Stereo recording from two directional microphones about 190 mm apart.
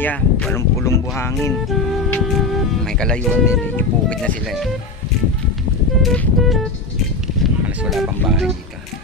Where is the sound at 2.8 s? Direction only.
5° left (ahead or behind).